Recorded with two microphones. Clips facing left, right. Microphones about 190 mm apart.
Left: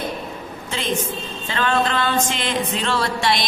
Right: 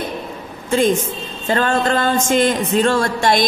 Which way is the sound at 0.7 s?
45° right (ahead or behind).